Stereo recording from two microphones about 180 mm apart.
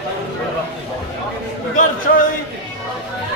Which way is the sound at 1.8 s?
50° left (ahead or behind).